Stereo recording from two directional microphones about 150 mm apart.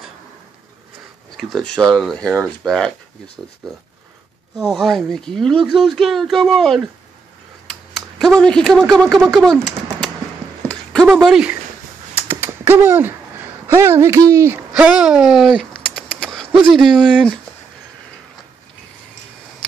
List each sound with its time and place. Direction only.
1.3 s speech: 5° left (ahead or behind)
3.4 s speech: 10° right (ahead or behind)
4.6 s speech: centre (ahead or behind)
7.9 s speech: 5° left (ahead or behind)
9.3 s bird: 5° left (ahead or behind)
10.7 s a sound: 5° left (ahead or behind)
11.1 s speech: 5° right (ahead or behind)
12.2 s typing: 15° right (ahead or behind)
13.7 s speech: 20° right (ahead or behind)
14.7 s speech: 5° right (ahead or behind)